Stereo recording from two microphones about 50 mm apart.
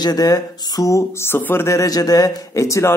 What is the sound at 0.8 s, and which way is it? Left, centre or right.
Speech, left.